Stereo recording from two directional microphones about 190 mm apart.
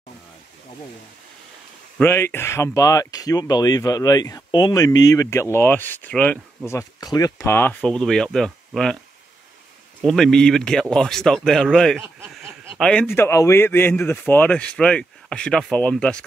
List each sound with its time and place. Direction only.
2.0 s speech: 10° left (ahead or behind)
6.7 s speech: 20° left (ahead or behind); by 8.9 s centre (ahead or behind)
10.0 s speech: centre (ahead or behind)